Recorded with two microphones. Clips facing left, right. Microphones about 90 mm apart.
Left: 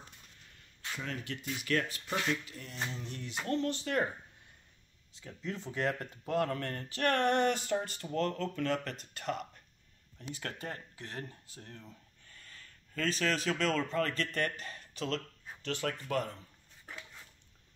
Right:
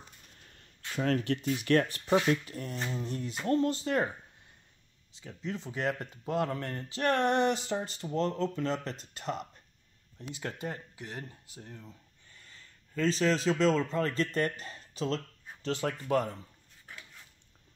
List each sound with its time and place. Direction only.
0.5 s speech: 50° right (ahead or behind)
2.4 s a sound: 40° right (ahead or behind)
3.4 s speech: 30° right (ahead or behind)
5.4 s speech: 15° right (ahead or behind)
10.4 s speech: 15° right (ahead or behind)